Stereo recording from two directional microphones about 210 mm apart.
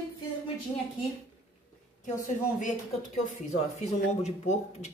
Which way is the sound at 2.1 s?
35° left (ahead or behind).